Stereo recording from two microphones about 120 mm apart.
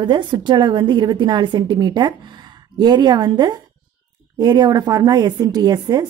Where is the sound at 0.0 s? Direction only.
40° right (ahead or behind).